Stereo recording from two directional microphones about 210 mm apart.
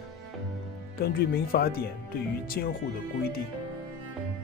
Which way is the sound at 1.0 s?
45° left (ahead or behind).